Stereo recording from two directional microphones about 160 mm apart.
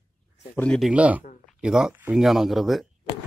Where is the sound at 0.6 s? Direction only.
5° left (ahead or behind).